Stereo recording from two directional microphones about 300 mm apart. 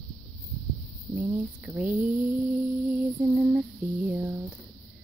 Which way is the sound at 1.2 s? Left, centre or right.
Centre.